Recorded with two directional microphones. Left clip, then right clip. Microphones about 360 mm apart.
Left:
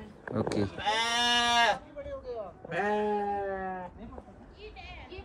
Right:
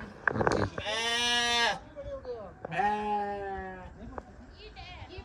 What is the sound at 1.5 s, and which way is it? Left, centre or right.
Livestock, centre.